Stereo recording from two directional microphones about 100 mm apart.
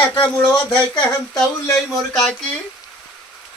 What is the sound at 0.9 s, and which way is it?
Speech, 45° left (ahead or behind).